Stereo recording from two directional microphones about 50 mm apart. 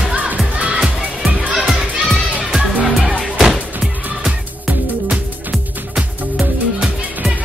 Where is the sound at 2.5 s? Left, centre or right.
Centre.